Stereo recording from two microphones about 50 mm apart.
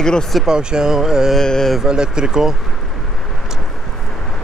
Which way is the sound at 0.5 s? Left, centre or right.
Centre.